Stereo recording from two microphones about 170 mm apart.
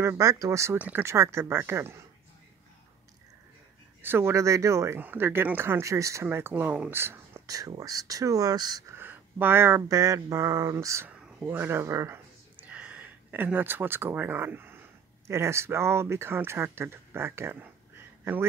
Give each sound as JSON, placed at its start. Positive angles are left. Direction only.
{"t": 0.0, "sound": "speech", "side_deg": -15}
{"t": 4.0, "sound": "speech", "side_deg": -15}